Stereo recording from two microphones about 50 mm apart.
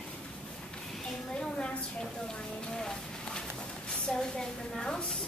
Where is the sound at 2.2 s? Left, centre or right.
Centre.